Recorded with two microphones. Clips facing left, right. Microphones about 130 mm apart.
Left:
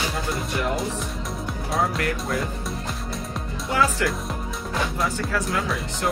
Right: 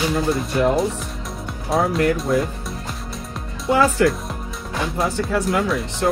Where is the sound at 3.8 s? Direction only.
Centre (ahead or behind).